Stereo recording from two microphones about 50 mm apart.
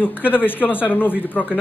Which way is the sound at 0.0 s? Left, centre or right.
Left.